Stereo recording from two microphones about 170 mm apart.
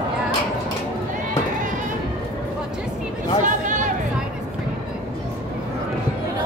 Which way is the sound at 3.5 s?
50° right (ahead or behind).